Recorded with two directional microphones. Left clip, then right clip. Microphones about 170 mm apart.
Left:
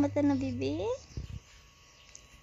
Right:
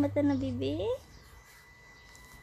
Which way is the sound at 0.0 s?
30° left (ahead or behind).